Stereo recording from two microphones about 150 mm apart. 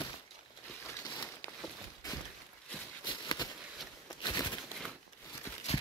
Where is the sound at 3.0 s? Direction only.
30° left (ahead or behind).